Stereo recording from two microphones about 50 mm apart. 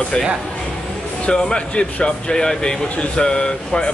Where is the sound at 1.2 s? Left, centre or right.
Centre.